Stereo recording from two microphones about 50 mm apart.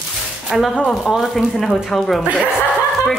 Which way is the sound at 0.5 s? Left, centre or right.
Centre.